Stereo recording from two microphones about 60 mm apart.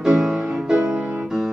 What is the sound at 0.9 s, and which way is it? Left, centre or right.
Music, right.